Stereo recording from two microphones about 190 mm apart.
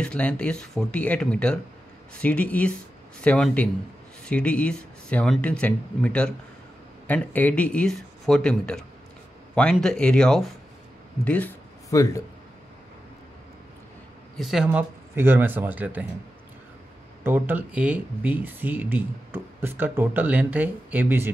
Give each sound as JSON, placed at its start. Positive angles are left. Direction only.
{"t": 0.0, "sound": "speech", "side_deg": 5}
{"t": 14.3, "sound": "speech", "side_deg": 0}
{"t": 17.2, "sound": "speech", "side_deg": -10}